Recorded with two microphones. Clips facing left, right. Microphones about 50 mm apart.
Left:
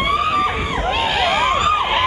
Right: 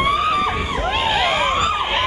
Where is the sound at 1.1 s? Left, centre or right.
Centre.